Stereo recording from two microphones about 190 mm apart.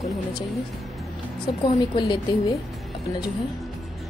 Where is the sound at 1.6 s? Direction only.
25° left (ahead or behind).